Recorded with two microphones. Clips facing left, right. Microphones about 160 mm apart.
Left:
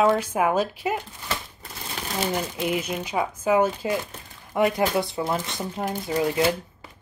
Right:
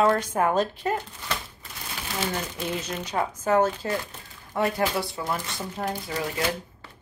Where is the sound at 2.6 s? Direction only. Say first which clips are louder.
Left 4 dB; 10° left (ahead or behind).